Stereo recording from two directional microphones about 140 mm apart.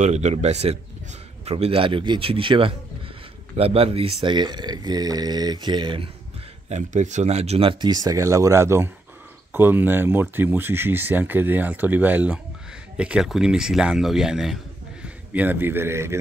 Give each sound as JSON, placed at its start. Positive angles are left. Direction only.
{"t": 0.0, "sound": "speech", "side_deg": -55}
{"t": 6.7, "sound": "speech", "side_deg": -60}
{"t": 7.8, "sound": "speech", "side_deg": -25}